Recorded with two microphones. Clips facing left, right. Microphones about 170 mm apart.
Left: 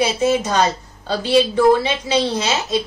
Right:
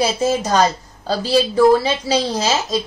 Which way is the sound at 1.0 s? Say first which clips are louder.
Left 1 dB; 35° right (ahead or behind).